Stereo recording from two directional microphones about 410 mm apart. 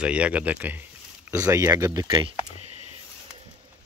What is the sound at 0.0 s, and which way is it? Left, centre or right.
Speech, centre.